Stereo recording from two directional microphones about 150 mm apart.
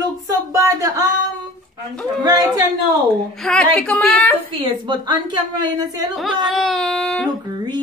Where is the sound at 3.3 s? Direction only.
5° left (ahead or behind).